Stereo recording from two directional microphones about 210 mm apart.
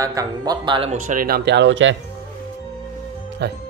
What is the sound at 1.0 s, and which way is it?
Speech, 45° right (ahead or behind).